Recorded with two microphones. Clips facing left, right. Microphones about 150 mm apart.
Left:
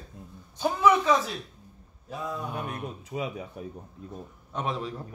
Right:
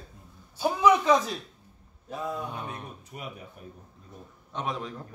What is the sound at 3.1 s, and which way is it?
Speech, 90° left.